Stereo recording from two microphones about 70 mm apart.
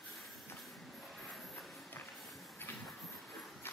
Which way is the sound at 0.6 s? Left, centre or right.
Centre.